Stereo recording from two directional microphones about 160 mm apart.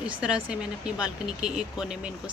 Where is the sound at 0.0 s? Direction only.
5° right (ahead or behind).